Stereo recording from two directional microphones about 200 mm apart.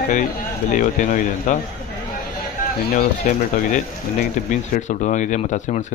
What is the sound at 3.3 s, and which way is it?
Speech, 40° left (ahead or behind).